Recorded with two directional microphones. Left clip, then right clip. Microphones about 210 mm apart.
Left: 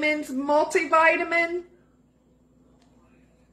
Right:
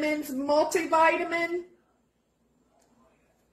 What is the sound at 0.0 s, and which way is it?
A woman's voice, 15° left (ahead or behind).